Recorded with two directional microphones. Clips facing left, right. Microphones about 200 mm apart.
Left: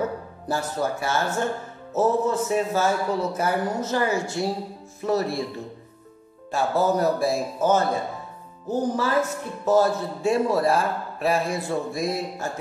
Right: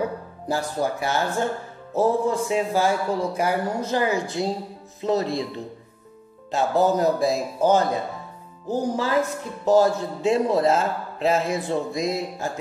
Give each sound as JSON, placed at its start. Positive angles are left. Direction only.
{"t": 0.0, "sound": "speech", "side_deg": -15}
{"t": 6.5, "sound": "speech", "side_deg": -15}